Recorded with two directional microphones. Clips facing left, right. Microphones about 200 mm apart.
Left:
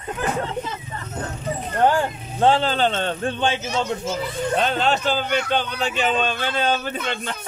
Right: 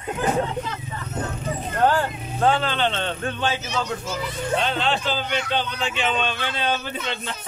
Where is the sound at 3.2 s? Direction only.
30° left (ahead or behind).